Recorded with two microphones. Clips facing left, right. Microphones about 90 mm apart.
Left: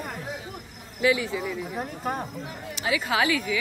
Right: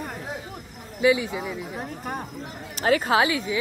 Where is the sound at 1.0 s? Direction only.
20° right (ahead or behind).